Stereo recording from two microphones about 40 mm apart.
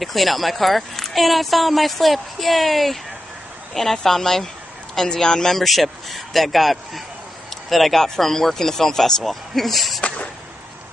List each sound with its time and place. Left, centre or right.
0.0 s speech: centre
5.6 s speech: centre